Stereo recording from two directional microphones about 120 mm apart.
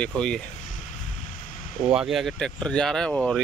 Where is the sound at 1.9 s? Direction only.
5° right (ahead or behind).